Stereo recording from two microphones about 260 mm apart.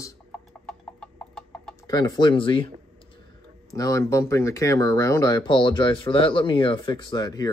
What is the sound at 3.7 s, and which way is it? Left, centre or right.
Speech, centre.